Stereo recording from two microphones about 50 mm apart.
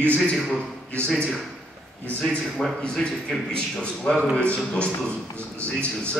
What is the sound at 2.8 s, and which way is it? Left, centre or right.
A man's voice, centre.